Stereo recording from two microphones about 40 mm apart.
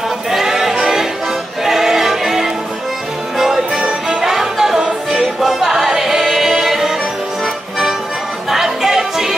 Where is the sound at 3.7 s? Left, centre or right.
Right.